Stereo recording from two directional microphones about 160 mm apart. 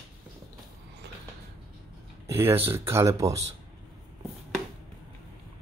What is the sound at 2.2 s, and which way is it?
Speech, 15° right (ahead or behind).